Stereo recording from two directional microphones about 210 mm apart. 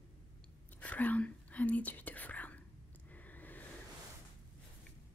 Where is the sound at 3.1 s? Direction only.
10° left (ahead or behind).